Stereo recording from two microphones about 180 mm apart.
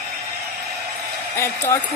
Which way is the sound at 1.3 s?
15° left (ahead or behind).